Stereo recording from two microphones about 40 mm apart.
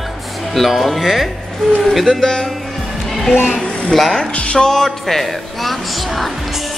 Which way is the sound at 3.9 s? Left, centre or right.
Centre.